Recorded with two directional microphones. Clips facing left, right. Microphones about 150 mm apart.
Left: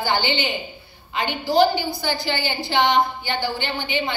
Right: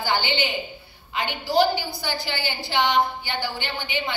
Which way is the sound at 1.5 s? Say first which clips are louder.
Left 3 dB; 10° right (ahead or behind).